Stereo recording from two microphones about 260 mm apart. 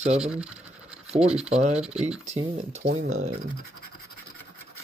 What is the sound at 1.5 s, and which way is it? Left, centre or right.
Speech, right.